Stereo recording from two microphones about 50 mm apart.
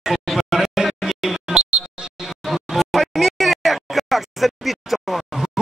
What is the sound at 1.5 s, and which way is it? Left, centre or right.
Music, centre.